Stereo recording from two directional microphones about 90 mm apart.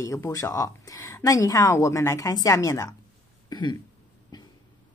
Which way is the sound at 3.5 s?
55° left (ahead or behind).